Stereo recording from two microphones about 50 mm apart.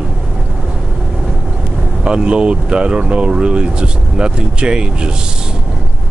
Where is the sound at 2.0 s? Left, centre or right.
Centre.